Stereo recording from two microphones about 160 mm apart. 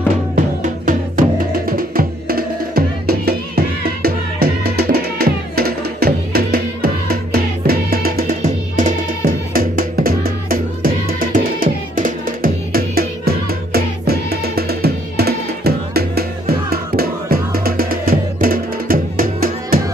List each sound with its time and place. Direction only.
0.8 s music: 60° right (ahead or behind)